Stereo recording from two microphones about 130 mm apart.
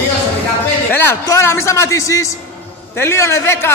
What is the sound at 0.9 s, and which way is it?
A man's voice, 20° left (ahead or behind).